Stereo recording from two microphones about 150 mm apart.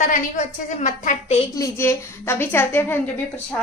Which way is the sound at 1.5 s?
20° left (ahead or behind).